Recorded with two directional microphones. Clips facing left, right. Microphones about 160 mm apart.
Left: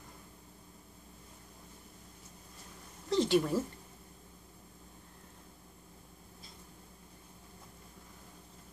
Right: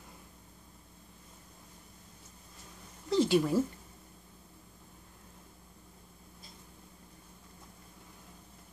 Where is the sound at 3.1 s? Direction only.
5° right (ahead or behind).